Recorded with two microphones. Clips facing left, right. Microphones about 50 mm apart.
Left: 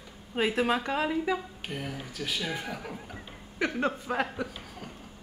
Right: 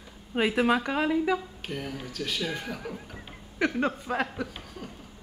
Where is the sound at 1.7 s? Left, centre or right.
Centre.